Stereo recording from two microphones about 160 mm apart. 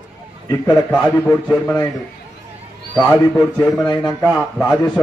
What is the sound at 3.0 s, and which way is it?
A man's voice, 20° left (ahead or behind).